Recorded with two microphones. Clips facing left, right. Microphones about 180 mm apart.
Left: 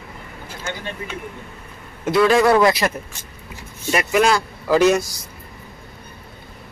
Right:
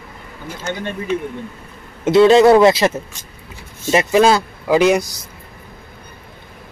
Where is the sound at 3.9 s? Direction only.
25° right (ahead or behind).